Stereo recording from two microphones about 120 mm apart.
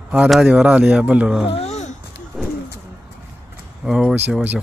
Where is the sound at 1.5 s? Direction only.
65° left (ahead or behind).